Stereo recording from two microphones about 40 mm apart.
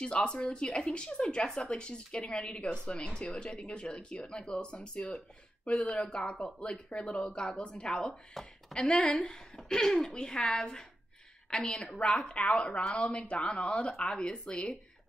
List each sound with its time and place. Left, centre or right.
0.0 s a woman's voice: left